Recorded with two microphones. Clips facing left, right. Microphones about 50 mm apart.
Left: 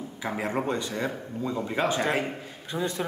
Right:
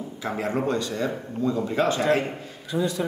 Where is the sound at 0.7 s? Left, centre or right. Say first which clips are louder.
Right 3 dB; left.